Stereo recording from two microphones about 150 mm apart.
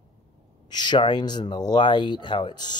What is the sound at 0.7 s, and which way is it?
Speech, 30° left (ahead or behind).